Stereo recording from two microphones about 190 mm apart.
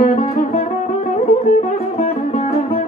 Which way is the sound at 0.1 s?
35° left (ahead or behind).